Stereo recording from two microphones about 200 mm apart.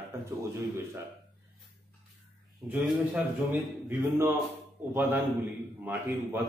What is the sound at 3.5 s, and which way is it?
A man's voice, 10° right (ahead or behind).